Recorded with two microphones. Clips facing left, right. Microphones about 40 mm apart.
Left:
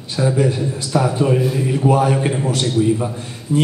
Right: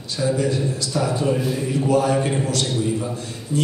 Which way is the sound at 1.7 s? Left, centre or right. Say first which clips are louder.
Left 2 dB; left.